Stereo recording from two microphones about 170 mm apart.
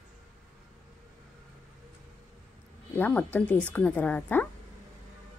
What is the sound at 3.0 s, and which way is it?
A woman's voice, 10° left (ahead or behind).